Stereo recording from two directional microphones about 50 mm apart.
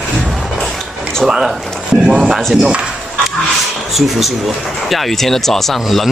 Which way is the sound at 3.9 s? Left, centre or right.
Centre.